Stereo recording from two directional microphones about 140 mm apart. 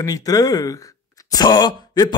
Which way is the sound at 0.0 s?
25° left (ahead or behind).